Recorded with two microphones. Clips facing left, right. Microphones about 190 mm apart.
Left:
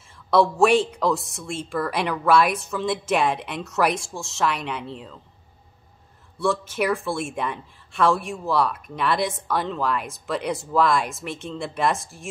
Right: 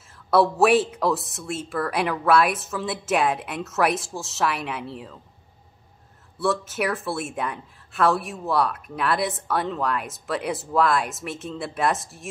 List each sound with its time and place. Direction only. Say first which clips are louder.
0.3 s speech: even; 5° right (ahead or behind)
6.3 s speech: left 1 dB; centre (ahead or behind)